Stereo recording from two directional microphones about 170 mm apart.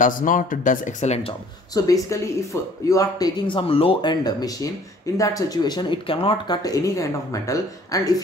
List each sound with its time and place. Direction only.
0.0 s speech: 50° left (ahead or behind)
1.7 s speech: 20° left (ahead or behind)